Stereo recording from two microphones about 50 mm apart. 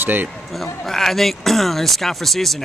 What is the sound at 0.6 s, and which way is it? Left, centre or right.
A man's voice, centre.